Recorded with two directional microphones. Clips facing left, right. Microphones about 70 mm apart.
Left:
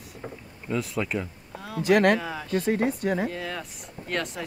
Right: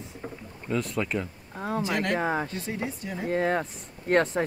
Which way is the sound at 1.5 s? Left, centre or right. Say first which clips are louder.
Right 5 dB; right.